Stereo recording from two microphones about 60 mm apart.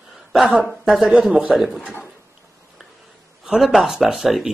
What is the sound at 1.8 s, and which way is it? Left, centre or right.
Speech, left.